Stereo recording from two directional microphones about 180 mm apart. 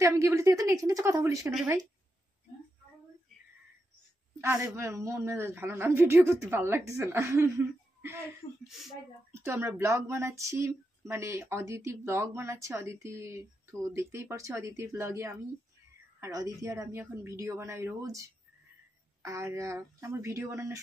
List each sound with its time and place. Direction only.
0.0 s speech: 15° right (ahead or behind)
4.4 s speech: 15° right (ahead or behind)
8.6 s speech: centre (ahead or behind)
9.3 s speech: 15° right (ahead or behind)
19.2 s speech: 15° right (ahead or behind)